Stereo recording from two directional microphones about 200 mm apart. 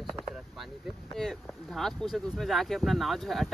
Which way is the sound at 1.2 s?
Centre (ahead or behind).